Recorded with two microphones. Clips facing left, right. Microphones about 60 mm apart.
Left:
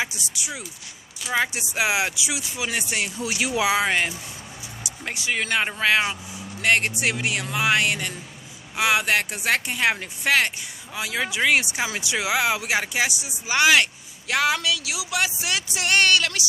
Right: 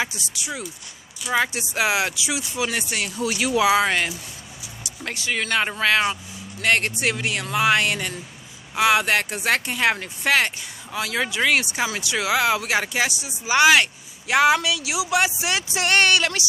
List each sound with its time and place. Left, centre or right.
0.0 s speech: centre
2.9 s speech: centre
11.0 s speech: centre
13.5 s speech: centre
14.2 s speech: right